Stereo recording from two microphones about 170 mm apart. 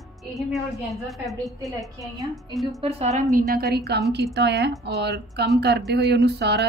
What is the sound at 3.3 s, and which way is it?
Speech, 65° right (ahead or behind).